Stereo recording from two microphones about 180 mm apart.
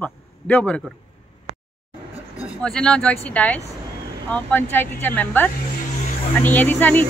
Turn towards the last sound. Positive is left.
turn(degrees=10)  # may be behind; listen again after turning